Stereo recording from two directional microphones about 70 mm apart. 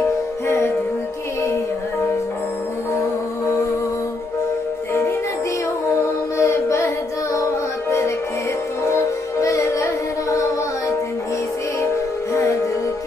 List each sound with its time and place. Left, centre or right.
6.3 s music: left
9.4 s music: left